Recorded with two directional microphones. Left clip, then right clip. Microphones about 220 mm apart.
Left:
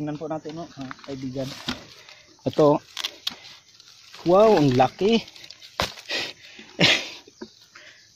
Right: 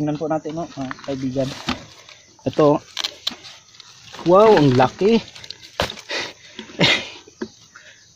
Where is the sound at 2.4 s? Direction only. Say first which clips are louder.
Right 3 dB; 30° left (ahead or behind).